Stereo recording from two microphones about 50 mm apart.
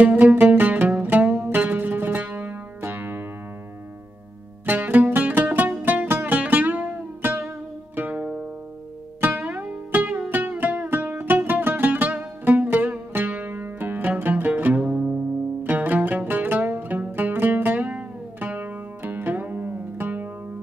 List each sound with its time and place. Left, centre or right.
0.0 s music: right
4.6 s music: right
15.6 s music: right
18.6 s zither: right